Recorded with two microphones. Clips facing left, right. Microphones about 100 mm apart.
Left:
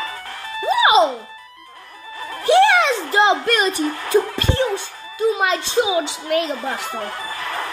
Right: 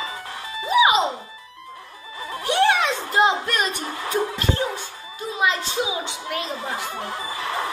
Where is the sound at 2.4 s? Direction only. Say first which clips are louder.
Left 6 dB; 90° left.